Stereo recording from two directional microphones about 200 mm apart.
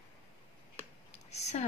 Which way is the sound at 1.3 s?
35° left (ahead or behind).